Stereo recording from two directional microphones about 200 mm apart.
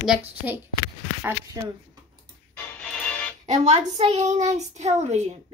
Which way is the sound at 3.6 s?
30° right (ahead or behind).